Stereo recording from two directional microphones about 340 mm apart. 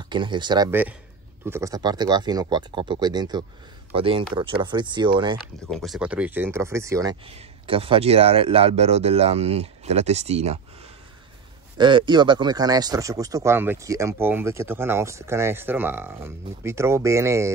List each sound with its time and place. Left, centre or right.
0.1 s speech: centre
5.7 s speech: centre
11.8 s speech: centre